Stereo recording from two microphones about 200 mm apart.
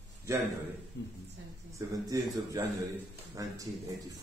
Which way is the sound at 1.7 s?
15° right (ahead or behind).